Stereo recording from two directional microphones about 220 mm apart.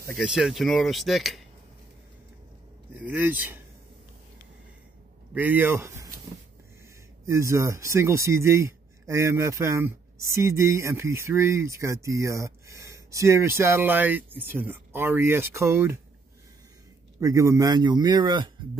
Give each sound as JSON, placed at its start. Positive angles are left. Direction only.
{"t": 0.2, "sound": "speech", "side_deg": 0}
{"t": 3.0, "sound": "speech", "side_deg": -10}
{"t": 5.3, "sound": "speech", "side_deg": -10}
{"t": 7.2, "sound": "speech", "side_deg": -15}
{"t": 17.2, "sound": "a man's voice", "side_deg": -15}